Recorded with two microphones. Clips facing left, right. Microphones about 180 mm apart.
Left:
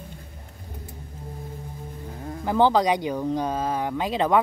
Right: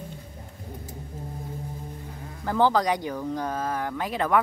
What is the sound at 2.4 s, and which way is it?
Speech, 20° left (ahead or behind).